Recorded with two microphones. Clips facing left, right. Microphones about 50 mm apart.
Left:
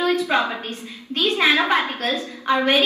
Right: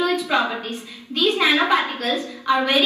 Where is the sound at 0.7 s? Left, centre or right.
Left.